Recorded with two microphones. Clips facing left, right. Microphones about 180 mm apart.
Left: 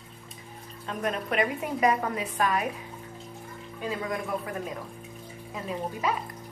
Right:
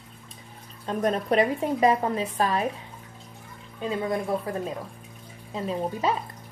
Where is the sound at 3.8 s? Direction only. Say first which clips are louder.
Right 4 dB; 30° right (ahead or behind).